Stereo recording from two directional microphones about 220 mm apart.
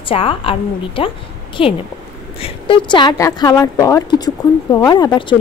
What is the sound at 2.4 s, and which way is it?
A woman's voice, 20° left (ahead or behind).